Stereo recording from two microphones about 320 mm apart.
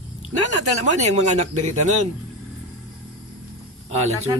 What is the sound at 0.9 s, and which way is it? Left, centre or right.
Speech, right.